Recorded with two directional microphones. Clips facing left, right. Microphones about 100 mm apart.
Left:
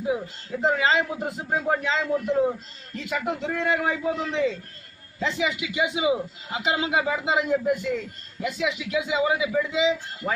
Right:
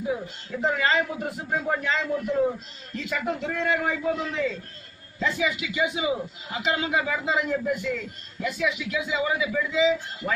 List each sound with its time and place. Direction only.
0.1 s a man's voice: 20° left (ahead or behind)